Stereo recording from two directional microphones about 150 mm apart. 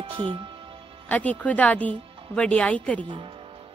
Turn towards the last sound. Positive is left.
turn(degrees=-35)  # may be behind; listen again after turning